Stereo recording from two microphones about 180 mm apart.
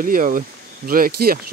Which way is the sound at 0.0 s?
50° right (ahead or behind).